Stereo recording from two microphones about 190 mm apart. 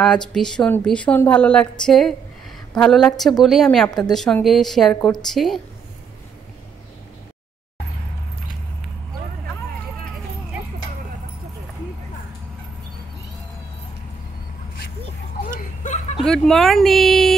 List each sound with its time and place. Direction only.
0.0 s a woman's voice: 5° left (ahead or behind)
15.5 s a sound: 40° left (ahead or behind)
16.2 s speech: centre (ahead or behind)